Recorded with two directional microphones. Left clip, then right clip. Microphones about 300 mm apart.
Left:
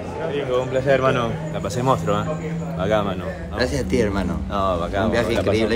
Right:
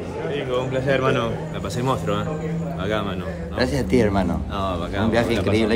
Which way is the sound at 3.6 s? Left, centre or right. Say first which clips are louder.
Right 1 dB; centre.